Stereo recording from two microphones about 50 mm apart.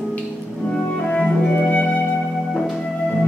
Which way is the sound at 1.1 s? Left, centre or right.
Left.